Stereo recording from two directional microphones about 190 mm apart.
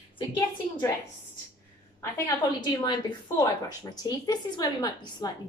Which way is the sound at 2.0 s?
15° left (ahead or behind).